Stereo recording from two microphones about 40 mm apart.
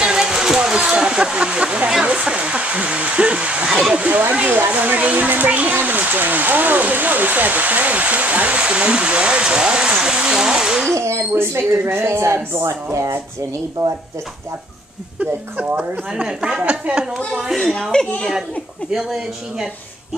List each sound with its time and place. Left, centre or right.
0.0 s a sound: centre
0.9 s waterfall: right
2.2 s a sound: right
3.9 s speech: right
4.5 s speech: right; by 10.9 s centre
10.9 s speech: right
15.1 s speech: right
16.2 s speech: centre
16.9 s speech: right
17.5 s speech: centre
19.0 s speech: centre